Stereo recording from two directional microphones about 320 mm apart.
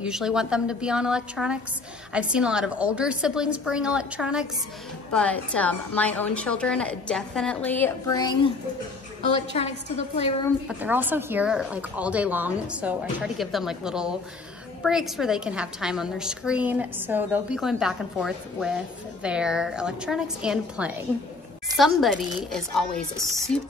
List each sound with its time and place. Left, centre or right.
0.0 s a woman's voice: centre
10.7 s a woman's voice: centre